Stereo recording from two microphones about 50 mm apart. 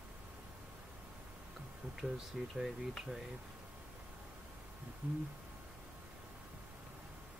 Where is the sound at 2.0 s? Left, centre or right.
Centre.